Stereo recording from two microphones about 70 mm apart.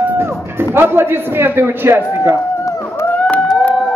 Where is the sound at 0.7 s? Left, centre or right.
Right.